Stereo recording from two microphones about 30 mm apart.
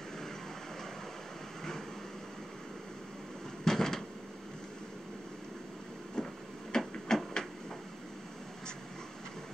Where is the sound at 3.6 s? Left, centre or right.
Centre.